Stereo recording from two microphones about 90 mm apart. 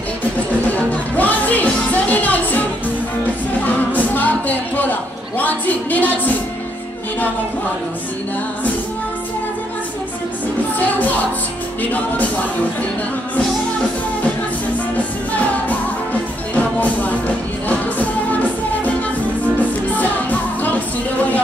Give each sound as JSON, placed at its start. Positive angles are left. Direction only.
{"t": 0.7, "sound": "music", "side_deg": 15}
{"t": 3.6, "sound": "music", "side_deg": 20}
{"t": 11.8, "sound": "music", "side_deg": 15}
{"t": 15.0, "sound": "music", "side_deg": 15}
{"t": 19.9, "sound": "music", "side_deg": 20}